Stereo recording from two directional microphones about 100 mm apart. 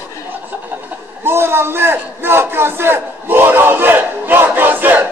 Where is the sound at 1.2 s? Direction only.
25° right (ahead or behind).